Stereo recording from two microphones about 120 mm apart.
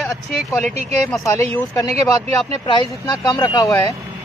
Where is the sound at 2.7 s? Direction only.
40° left (ahead or behind).